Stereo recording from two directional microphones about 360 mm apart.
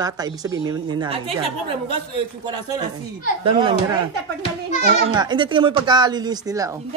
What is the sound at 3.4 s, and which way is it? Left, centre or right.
Speech, centre.